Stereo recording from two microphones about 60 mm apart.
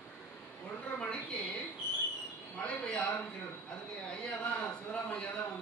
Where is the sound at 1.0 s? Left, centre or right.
Centre.